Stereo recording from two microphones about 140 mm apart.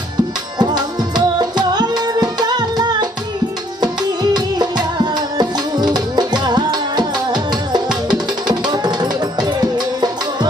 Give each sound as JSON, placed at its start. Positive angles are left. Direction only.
{"t": 0.6, "sound": "music", "side_deg": -30}